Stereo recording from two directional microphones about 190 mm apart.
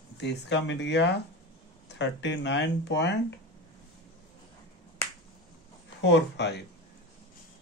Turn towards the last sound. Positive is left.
turn(degrees=65)  # may be behind; listen again after turning